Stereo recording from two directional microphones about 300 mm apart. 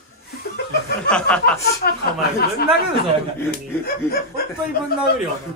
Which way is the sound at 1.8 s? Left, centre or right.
Left.